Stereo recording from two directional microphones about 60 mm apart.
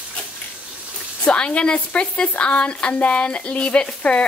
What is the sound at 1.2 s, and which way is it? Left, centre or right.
A woman's voice, centre.